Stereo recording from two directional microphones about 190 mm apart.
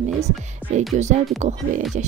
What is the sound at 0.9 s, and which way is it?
Speech, 35° right (ahead or behind).